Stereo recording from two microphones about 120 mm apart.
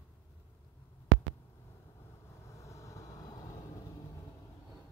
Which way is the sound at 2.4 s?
25° left (ahead or behind).